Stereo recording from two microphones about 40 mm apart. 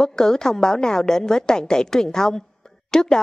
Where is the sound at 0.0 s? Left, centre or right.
Centre.